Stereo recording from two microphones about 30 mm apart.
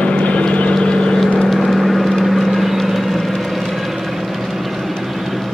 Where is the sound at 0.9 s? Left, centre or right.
Left.